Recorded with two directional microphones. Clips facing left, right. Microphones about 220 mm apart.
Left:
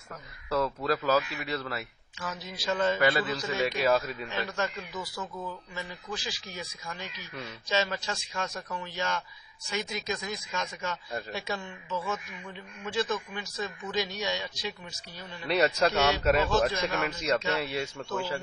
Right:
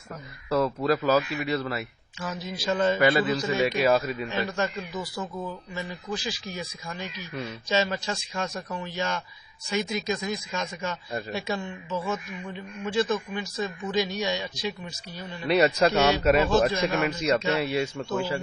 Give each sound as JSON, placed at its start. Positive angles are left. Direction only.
{"t": 0.8, "sound": "a man's voice", "side_deg": -15}
{"t": 2.6, "sound": "a man's voice", "side_deg": -30}
{"t": 3.0, "sound": "a man's voice", "side_deg": -15}
{"t": 4.7, "sound": "a man's voice", "side_deg": -25}
{"t": 7.3, "sound": "a man's voice", "side_deg": -20}